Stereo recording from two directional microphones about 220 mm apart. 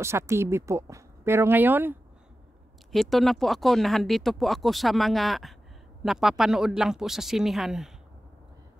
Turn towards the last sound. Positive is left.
turn(degrees=0)  # may be behind; listen again after turning